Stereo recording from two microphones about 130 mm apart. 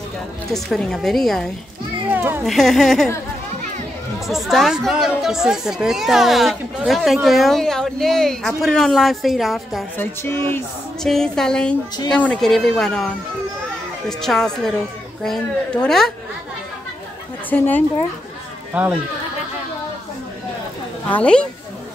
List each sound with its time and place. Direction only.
0.5 s speech: 5° left (ahead or behind)
2.1 s a sound: 15° right (ahead or behind)
2.4 s speech: centre (ahead or behind)
4.3 s speech: centre (ahead or behind)
9.9 s music: 15° left (ahead or behind)
11.0 s speech: 5° left (ahead or behind)
17.5 s music: 15° left (ahead or behind)
18.7 s speech: 10° right (ahead or behind)
21.1 s music: 10° left (ahead or behind)